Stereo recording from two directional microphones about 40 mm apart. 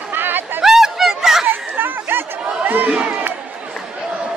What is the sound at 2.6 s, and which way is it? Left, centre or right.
Crowd, right.